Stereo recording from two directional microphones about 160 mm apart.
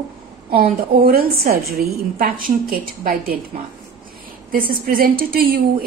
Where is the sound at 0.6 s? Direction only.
70° right (ahead or behind).